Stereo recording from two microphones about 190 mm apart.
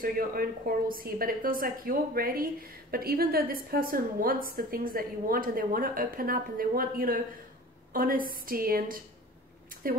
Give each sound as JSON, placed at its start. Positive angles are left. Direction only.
{"t": 0.0, "sound": "a woman's voice", "side_deg": -50}